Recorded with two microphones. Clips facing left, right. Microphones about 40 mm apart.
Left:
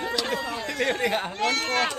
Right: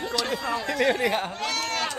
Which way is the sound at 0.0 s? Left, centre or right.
Centre.